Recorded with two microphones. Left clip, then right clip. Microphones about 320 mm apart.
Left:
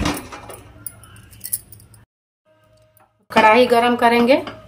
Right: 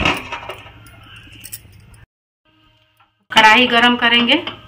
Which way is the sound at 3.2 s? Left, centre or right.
Left.